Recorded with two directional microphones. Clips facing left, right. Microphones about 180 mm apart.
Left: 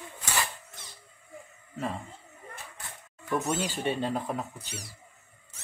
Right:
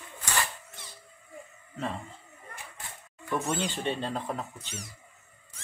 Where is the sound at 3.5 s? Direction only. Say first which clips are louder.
Left 1 dB; 5° left (ahead or behind).